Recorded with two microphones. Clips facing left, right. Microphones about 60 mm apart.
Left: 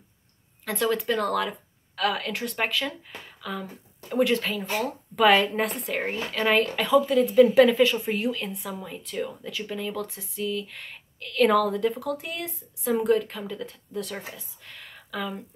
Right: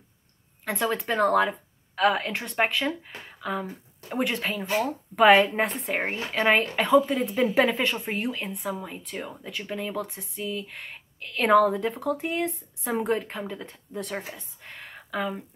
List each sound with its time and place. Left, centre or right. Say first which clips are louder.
0.7 s a woman's voice: left 2 dB; centre
4.3 s a woman's voice: left 1 dB; centre
8.5 s speech: right 3 dB; centre
8.8 s a woman's voice: left 3 dB; right